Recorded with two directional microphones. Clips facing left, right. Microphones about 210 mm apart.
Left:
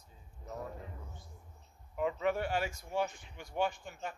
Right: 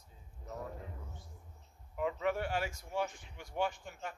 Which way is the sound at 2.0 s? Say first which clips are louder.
Left 2 dB; 25° left (ahead or behind).